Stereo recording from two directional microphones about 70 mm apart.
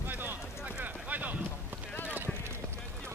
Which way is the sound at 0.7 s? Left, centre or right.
Right.